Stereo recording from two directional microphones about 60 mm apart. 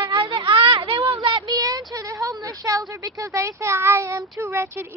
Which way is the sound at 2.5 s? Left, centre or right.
Right.